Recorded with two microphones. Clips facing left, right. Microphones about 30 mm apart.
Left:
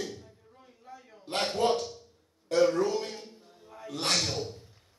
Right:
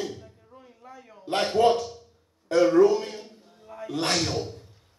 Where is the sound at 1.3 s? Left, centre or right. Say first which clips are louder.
Right 6 dB; right.